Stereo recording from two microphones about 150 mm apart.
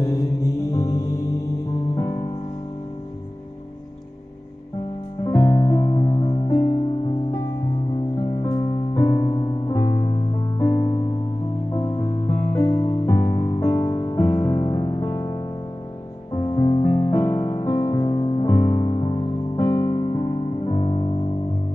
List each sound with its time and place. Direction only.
0.0 s music: 20° left (ahead or behind)
5.3 s music: 25° left (ahead or behind)
8.2 s music: 35° left (ahead or behind)
16.3 s music: 30° left (ahead or behind)